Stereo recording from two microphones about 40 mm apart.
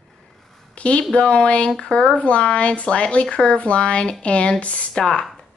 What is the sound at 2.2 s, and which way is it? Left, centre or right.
Speech, left.